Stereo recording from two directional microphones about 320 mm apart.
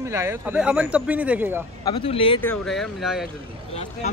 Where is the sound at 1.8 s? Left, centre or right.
Centre.